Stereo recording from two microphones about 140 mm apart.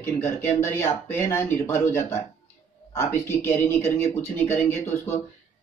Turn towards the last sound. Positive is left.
turn(degrees=15)  # may be behind; listen again after turning